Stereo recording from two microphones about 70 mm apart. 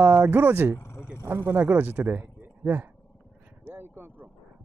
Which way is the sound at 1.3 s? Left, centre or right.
Right.